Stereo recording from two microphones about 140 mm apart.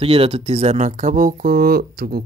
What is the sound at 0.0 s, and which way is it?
Speech, 45° right (ahead or behind).